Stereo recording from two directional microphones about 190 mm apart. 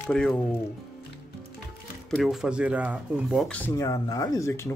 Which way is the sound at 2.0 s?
Centre (ahead or behind).